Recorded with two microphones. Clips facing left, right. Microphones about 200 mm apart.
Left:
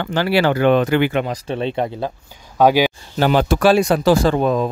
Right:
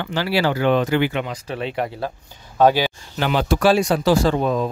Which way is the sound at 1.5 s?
25° left (ahead or behind).